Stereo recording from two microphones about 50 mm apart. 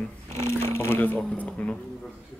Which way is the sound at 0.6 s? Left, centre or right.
Left.